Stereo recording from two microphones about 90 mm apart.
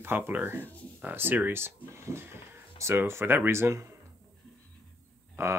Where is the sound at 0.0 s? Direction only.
25° right (ahead or behind).